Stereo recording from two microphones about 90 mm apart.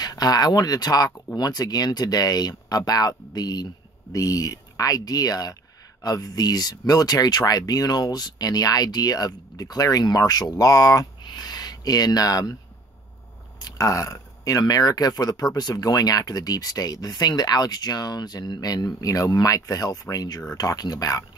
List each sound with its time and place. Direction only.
0.0 s speech: 45° left (ahead or behind)
13.6 s speech: 40° left (ahead or behind)